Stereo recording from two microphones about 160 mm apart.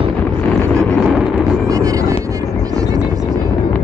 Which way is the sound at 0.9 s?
5° left (ahead or behind).